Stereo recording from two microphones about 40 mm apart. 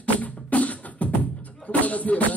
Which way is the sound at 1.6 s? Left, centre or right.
Left.